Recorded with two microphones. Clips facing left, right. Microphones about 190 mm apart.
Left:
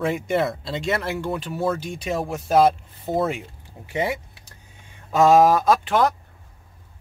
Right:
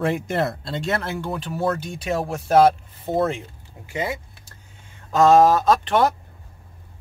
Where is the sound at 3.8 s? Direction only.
25° left (ahead or behind).